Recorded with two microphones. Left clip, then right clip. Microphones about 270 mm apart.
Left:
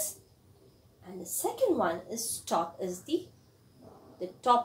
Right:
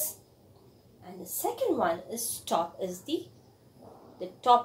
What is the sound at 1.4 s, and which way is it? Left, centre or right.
A woman's voice, centre.